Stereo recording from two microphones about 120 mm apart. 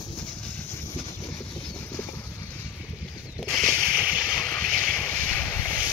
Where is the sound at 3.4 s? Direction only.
5° left (ahead or behind).